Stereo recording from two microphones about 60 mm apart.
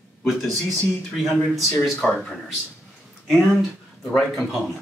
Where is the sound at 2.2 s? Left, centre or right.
Centre.